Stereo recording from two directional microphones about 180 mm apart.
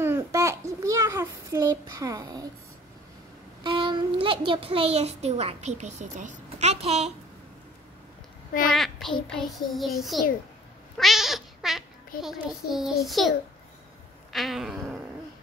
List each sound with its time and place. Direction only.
0.0 s child singing: 15° right (ahead or behind)
3.6 s child singing: 25° right (ahead or behind)
4.5 s a child's voice: 30° right (ahead or behind)
8.6 s child singing: centre (ahead or behind)
11.0 s cat: centre (ahead or behind)
12.2 s child singing: centre (ahead or behind)
14.3 s child singing: centre (ahead or behind)